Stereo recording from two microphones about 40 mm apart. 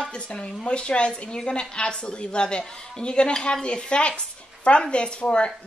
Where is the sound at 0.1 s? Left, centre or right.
Left.